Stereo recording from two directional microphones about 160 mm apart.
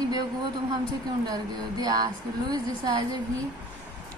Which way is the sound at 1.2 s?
25° right (ahead or behind).